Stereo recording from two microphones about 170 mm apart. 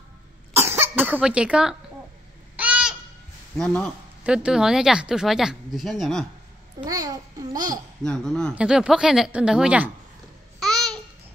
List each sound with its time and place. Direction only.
0.5 s cough: 15° right (ahead or behind)
2.5 s goat: 5° right (ahead or behind)
3.5 s speech: 5° left (ahead or behind)
6.8 s a child's voice: 20° right (ahead or behind)
8.0 s speech: 5° left (ahead or behind)
10.6 s babbling: centre (ahead or behind)